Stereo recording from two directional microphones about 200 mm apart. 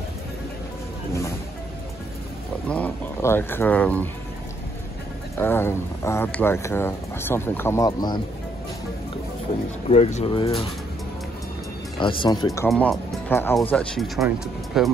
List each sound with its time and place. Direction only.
2.7 s speech: 10° left (ahead or behind)
5.4 s speech: 10° left (ahead or behind)
9.8 s speech: 35° left (ahead or behind)
12.0 s speech: 25° left (ahead or behind)
12.6 s speech: 5° left (ahead or behind)